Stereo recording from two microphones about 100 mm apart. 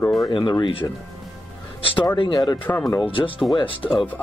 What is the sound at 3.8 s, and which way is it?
Speech, 20° left (ahead or behind).